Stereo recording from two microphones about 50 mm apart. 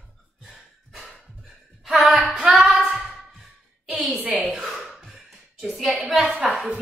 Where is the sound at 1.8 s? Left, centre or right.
Centre.